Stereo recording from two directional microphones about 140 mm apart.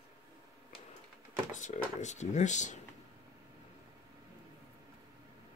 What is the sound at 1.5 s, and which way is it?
Speech, 60° left (ahead or behind).